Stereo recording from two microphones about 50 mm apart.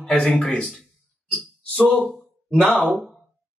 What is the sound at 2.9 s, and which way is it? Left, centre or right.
Speech, centre.